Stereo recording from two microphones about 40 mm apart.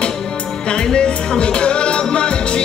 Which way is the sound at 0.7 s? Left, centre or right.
Left.